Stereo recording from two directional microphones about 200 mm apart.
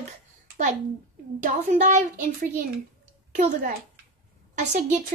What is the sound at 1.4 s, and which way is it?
A woman's voice, 40° right (ahead or behind).